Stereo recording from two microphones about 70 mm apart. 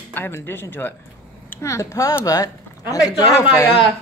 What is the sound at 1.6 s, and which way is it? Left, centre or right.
Speech, left.